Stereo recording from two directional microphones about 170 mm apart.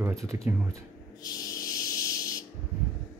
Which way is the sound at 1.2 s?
20° left (ahead or behind).